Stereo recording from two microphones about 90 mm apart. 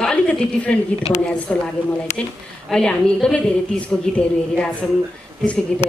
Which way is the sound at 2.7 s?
10° left (ahead or behind).